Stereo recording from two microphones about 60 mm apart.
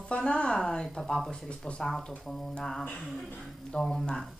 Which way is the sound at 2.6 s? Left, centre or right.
Centre.